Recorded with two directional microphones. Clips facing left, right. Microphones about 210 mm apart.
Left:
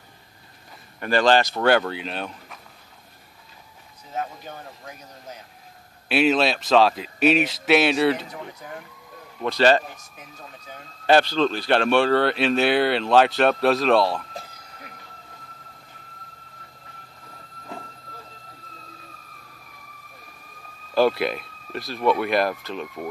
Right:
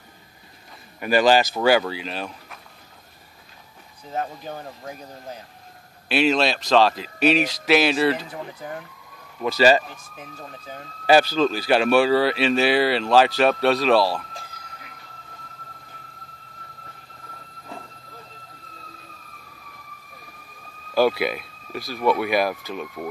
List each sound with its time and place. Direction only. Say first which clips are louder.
0.9 s speech: right 1 dB; 10° right (ahead or behind)
4.1 s speech: right 2 dB; 35° right (ahead or behind)
6.0 s speech: even; centre (ahead or behind)
9.4 s speech: right 1 dB; 5° right (ahead or behind)
11.1 s speech: right 1 dB; 5° right (ahead or behind)
20.9 s speech: even; 5° right (ahead or behind)